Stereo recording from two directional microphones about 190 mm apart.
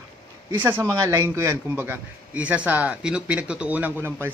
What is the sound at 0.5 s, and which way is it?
A man's voice, 10° right (ahead or behind).